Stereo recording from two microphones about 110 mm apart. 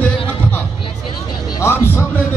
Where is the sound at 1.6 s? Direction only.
25° left (ahead or behind).